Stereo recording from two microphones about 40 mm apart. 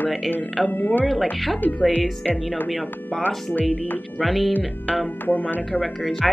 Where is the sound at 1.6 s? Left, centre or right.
Left.